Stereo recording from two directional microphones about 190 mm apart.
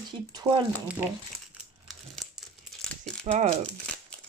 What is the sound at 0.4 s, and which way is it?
Speech, 25° right (ahead or behind).